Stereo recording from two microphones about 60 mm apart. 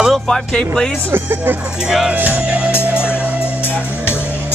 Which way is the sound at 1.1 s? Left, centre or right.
Right.